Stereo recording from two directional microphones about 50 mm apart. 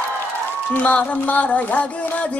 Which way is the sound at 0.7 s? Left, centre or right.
Left.